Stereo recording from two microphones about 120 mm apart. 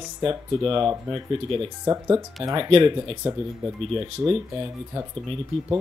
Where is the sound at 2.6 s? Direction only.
50° right (ahead or behind).